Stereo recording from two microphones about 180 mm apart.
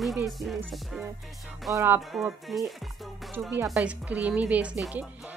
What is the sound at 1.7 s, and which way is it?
Speech, 10° right (ahead or behind).